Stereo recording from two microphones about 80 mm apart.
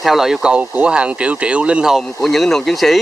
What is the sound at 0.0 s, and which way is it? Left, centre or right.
Speech, centre.